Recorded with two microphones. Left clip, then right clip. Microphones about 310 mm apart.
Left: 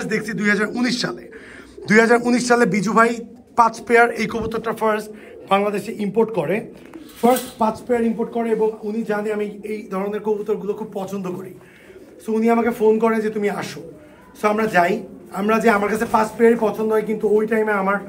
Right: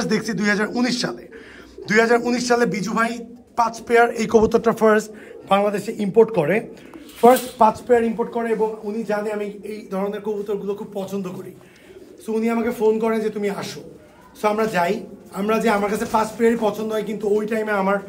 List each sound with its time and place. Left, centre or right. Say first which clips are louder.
0.0 s a man's voice: even; centre; by 6.6 s right
7.6 s a man's voice: right 5 dB; centre